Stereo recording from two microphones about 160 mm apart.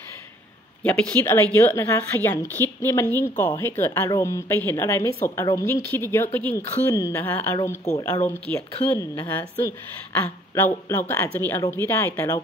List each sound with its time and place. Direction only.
0.8 s a woman's voice: 5° left (ahead or behind)